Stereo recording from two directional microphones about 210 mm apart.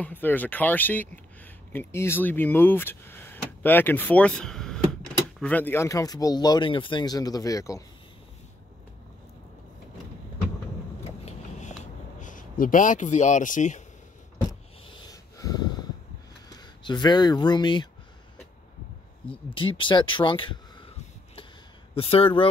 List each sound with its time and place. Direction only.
0.0 s speech: 10° left (ahead or behind)
11.8 s a sound: 35° left (ahead or behind)
15.0 s a sound: 20° left (ahead or behind)
16.5 s speech: 20° left (ahead or behind)
19.5 s speech: 25° left (ahead or behind)
21.9 s speech: 25° left (ahead or behind)